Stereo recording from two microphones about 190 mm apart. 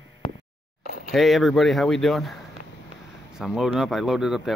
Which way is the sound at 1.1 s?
Centre (ahead or behind).